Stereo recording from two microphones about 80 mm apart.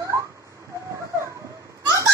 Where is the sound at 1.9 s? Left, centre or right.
Right.